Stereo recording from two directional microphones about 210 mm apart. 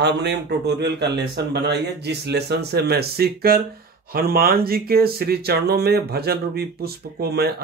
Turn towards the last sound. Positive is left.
turn(degrees=-50)  # may be behind; listen again after turning